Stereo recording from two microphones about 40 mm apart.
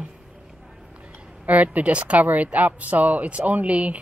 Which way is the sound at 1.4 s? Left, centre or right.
Right.